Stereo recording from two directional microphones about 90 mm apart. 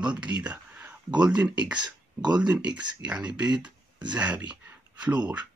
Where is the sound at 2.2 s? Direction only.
55° right (ahead or behind).